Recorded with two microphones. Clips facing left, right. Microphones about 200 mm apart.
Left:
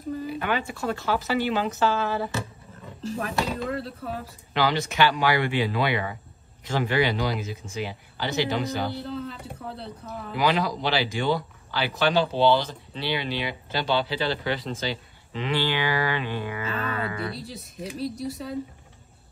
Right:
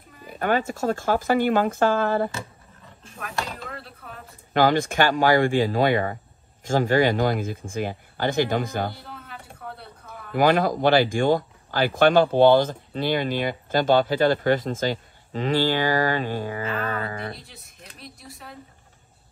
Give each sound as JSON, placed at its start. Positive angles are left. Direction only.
{"t": 0.3, "sound": "speech", "side_deg": -45}
{"t": 3.7, "sound": "speech", "side_deg": 30}
{"t": 4.6, "sound": "speech", "side_deg": -50}
{"t": 10.0, "sound": "speech", "side_deg": -50}